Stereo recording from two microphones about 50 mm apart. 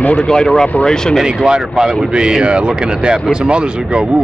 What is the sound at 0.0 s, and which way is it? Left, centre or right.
Speech, left.